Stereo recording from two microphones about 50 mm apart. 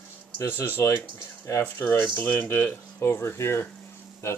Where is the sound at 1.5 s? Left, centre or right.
Left.